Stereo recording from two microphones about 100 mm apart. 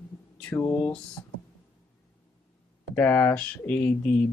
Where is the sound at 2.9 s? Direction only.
20° left (ahead or behind).